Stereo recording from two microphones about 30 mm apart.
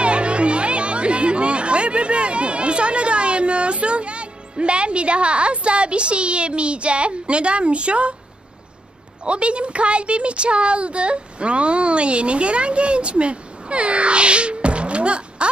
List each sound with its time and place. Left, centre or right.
0.0 s speech: right
9.2 s a child's voice: right